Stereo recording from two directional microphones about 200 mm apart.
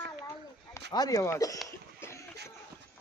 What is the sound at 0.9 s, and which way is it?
Speech, 20° left (ahead or behind).